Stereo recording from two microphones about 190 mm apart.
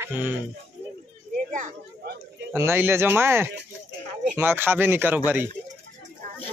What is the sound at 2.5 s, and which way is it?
A man's voice, 15° right (ahead or behind).